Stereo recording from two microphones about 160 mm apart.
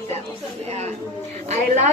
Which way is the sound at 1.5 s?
45° right (ahead or behind).